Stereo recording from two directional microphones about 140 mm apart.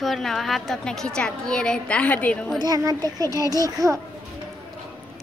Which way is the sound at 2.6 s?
25° right (ahead or behind).